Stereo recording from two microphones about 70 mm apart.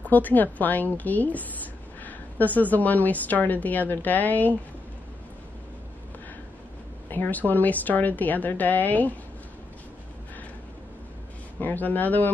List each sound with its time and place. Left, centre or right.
0.1 s a woman's voice: left
7.1 s a woman's voice: left
11.6 s a woman's voice: left